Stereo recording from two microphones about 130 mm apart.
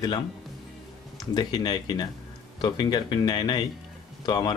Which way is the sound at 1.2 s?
30° left (ahead or behind).